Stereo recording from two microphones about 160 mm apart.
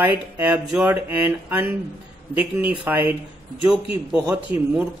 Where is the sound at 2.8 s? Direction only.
10° right (ahead or behind).